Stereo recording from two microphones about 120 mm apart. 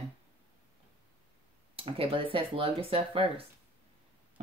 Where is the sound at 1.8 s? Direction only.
50° right (ahead or behind).